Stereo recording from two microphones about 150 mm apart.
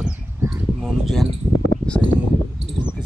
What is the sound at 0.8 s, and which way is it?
Speech, centre (ahead or behind).